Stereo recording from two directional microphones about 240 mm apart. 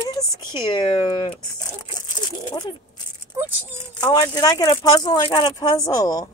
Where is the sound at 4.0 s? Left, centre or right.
Centre.